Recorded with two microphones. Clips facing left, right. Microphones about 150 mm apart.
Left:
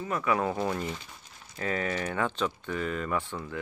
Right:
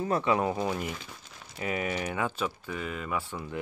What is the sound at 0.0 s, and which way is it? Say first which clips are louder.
Speech: right 2 dB; 30° right (ahead or behind).